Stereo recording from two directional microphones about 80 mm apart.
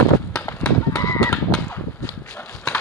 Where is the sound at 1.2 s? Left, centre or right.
Centre.